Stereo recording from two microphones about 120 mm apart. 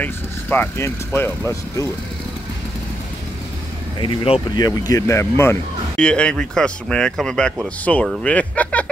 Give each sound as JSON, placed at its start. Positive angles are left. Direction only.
{"t": 0.0, "sound": "speech", "side_deg": 15}
{"t": 4.0, "sound": "speech", "side_deg": 50}
{"t": 4.6, "sound": "speech", "side_deg": 30}
{"t": 5.9, "sound": "speech", "side_deg": 10}